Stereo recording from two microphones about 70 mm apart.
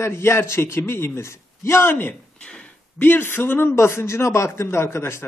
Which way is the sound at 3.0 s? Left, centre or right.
Left.